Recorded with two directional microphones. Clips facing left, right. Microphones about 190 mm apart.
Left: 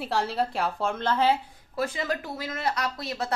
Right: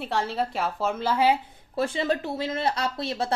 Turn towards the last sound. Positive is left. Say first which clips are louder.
# right 3 dB
turn(degrees=-30)  # may be behind; listen again after turning